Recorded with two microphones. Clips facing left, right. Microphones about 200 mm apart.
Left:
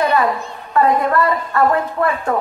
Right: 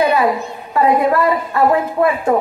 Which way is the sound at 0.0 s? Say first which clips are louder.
Right 2 dB; 10° right (ahead or behind).